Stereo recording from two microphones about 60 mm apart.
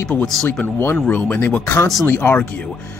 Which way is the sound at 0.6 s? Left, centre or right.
Left.